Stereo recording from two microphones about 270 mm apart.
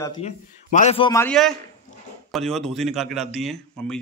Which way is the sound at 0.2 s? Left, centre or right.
Left.